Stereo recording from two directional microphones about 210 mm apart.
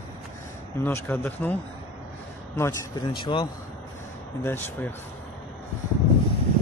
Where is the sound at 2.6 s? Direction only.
15° left (ahead or behind).